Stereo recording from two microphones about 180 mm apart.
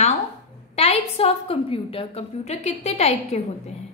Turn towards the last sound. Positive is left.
turn(degrees=35)  # may be behind; listen again after turning